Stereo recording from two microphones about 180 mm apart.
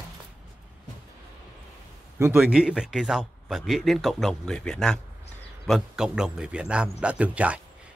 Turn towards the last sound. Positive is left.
turn(degrees=-5)  # may be behind; listen again after turning